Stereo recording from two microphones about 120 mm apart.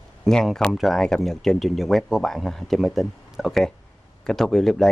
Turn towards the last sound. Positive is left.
turn(degrees=5)  # may be behind; listen again after turning